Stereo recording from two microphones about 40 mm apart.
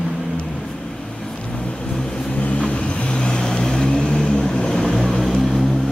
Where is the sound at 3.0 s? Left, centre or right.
Left; by 5.6 s centre.